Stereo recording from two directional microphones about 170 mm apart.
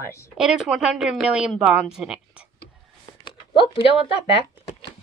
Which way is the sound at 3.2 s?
30° left (ahead or behind).